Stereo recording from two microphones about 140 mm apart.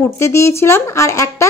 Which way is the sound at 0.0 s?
20° left (ahead or behind).